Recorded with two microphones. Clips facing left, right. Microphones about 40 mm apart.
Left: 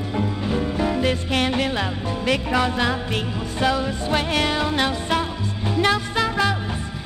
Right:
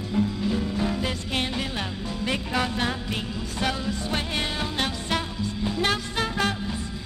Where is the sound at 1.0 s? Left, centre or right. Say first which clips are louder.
Left 7 dB; left.